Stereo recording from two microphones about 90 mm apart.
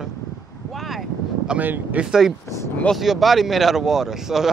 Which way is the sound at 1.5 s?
20° right (ahead or behind).